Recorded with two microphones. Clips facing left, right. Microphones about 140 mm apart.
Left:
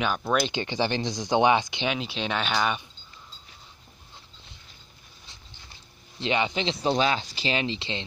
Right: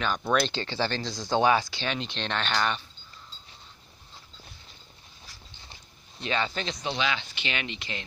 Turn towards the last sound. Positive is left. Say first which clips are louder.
# left 6 dB
turn(degrees=30)  # may be behind; listen again after turning